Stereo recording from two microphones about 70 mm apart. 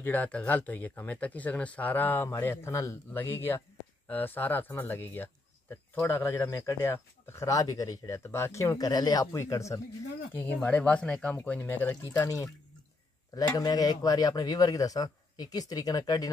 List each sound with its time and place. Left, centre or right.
0.0 s a man's voice: left
7.4 s speech: left
8.1 s speech: left
9.4 s speech: left
10.3 s speech: left
11.6 s a man's voice: left
12.2 s speech: left
13.3 s speech: left